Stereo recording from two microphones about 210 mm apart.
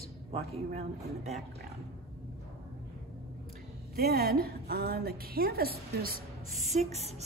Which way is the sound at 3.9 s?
45° right (ahead or behind).